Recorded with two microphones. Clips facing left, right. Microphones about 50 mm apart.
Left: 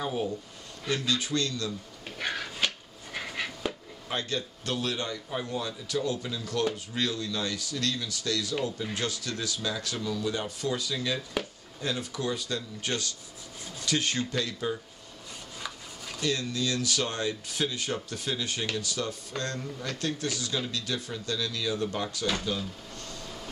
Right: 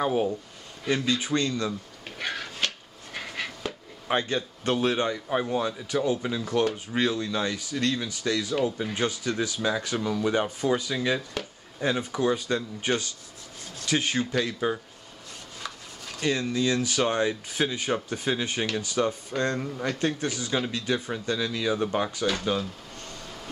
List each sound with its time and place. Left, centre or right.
0.0 s speech: right
2.0 s a sound: centre
4.1 s speech: right
16.2 s speech: right
22.4 s drawer open or close: right
23.2 s vehicle: centre